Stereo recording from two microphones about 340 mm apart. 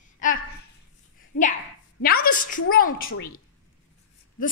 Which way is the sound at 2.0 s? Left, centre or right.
Left.